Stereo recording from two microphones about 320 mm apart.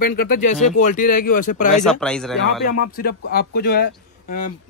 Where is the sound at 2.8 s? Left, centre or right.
Left.